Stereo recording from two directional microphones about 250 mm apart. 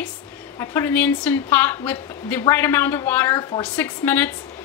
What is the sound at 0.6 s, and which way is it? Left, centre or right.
A woman's voice, centre.